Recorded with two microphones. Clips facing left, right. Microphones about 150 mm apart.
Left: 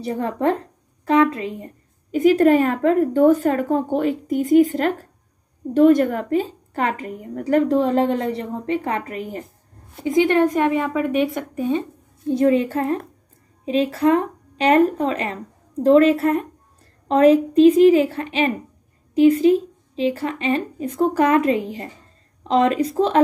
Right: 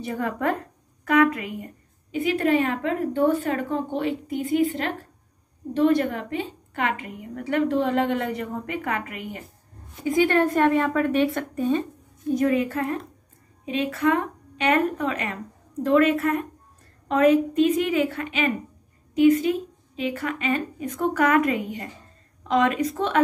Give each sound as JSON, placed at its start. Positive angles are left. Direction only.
{"t": 0.0, "sound": "a woman's voice", "side_deg": 30}
{"t": 2.0, "sound": "a woman's voice", "side_deg": 40}
{"t": 10.0, "sound": "a woman's voice", "side_deg": 20}
{"t": 12.3, "sound": "a woman's voice", "side_deg": 30}